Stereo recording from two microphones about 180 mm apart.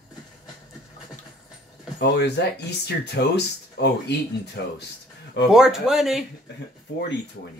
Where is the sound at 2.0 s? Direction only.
70° left (ahead or behind).